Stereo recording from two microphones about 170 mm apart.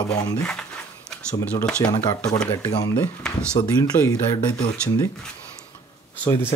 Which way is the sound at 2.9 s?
10° left (ahead or behind).